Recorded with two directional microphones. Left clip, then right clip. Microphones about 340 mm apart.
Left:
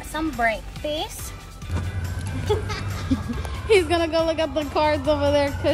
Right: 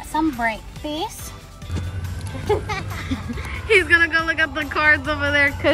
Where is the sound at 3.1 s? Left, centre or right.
Centre.